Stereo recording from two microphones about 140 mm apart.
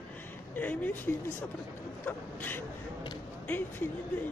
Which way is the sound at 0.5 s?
10° left (ahead or behind).